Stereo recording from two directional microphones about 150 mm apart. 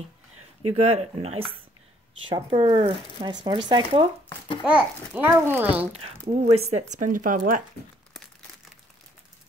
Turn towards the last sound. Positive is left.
turn(degrees=-65)  # may be behind; listen again after turning